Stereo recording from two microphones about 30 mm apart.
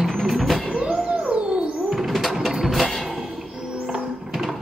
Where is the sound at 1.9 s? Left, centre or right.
Centre.